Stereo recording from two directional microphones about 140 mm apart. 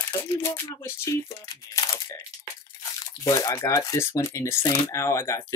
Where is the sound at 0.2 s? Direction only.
20° left (ahead or behind).